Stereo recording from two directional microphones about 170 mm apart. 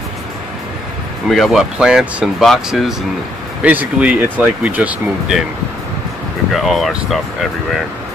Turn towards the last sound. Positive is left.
turn(degrees=0)  # may be behind; listen again after turning